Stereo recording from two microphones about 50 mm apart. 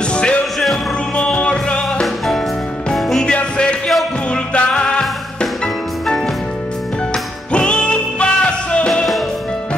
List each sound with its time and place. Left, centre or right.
0.1 s music: left
2.9 s music: centre
3.3 s music: centre
7.5 s music: left